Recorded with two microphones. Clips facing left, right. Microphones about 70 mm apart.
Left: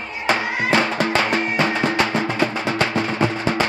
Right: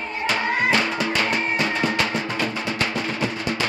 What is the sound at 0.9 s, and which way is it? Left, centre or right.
Music, left.